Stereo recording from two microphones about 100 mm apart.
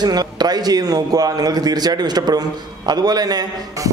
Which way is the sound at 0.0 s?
45° right (ahead or behind).